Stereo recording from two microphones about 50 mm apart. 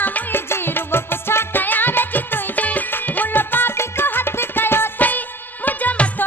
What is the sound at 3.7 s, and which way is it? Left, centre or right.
Music, left.